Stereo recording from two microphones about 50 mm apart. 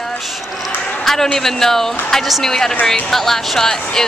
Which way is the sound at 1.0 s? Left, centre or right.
Centre.